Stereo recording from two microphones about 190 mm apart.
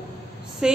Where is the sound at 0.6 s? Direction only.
5° right (ahead or behind).